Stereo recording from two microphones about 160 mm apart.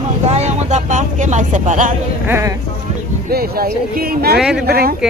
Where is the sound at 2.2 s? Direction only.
15° right (ahead or behind).